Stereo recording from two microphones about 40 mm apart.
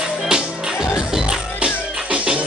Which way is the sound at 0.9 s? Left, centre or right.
Centre.